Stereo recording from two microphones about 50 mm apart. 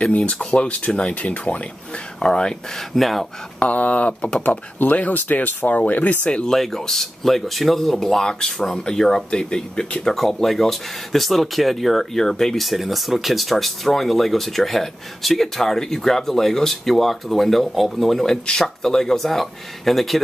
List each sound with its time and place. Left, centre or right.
0.0 s speech: left
2.2 s speech: centre
3.0 s speech: centre
3.5 s speech: left
6.2 s speech: centre